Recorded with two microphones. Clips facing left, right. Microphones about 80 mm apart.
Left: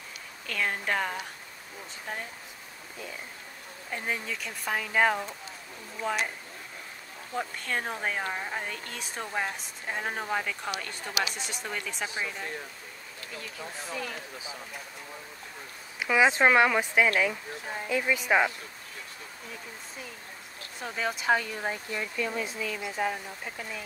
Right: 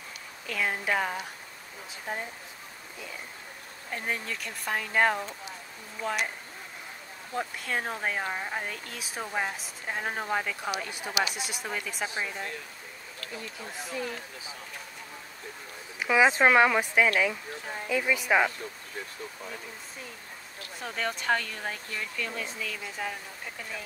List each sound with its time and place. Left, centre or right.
0.5 s speech: centre
3.9 s speech: centre
7.3 s speech: centre
12.1 s speech: centre
16.0 s speech: centre
20.8 s speech: centre